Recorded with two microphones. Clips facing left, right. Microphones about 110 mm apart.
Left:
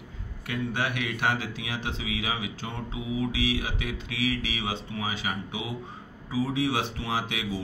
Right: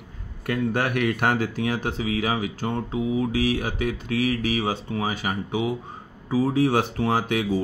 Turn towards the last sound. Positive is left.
turn(degrees=-45)  # may be behind; listen again after turning